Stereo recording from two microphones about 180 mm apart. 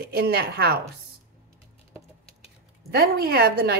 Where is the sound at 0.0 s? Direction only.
60° right (ahead or behind).